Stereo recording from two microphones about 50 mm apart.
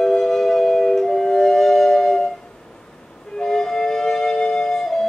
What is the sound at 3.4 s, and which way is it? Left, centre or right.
Music, centre.